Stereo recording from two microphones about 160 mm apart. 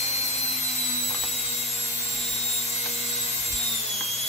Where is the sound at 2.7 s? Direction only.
40° left (ahead or behind).